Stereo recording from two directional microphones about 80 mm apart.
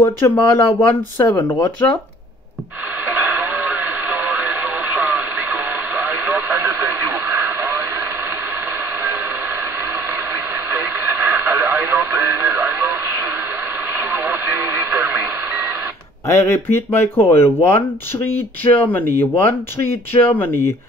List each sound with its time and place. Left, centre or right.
0.0 s speech: left
1.3 s speech: left
3.1 s radio: right
9.9 s radio: right
16.3 s speech: left